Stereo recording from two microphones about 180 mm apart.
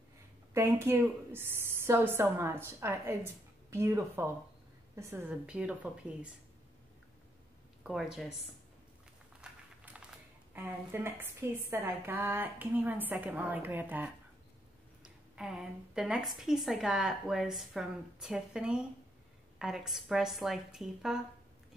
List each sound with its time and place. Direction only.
0.5 s a woman's voice: 15° right (ahead or behind)
7.8 s a woman's voice: centre (ahead or behind)
9.4 s a sound: 5° right (ahead or behind)
10.5 s a woman's voice: 10° right (ahead or behind)
15.3 s a woman's voice: 5° right (ahead or behind)